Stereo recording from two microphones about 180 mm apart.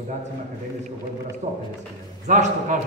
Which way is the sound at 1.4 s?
55° right (ahead or behind).